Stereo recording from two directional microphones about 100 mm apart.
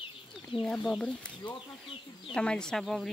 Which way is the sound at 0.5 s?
Centre (ahead or behind).